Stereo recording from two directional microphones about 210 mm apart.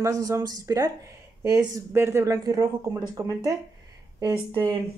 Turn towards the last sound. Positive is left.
turn(degrees=-20)  # may be behind; listen again after turning